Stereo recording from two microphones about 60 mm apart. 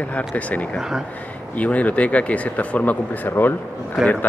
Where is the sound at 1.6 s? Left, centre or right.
Left.